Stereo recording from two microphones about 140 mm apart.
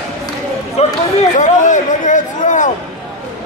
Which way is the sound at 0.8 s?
50° left (ahead or behind).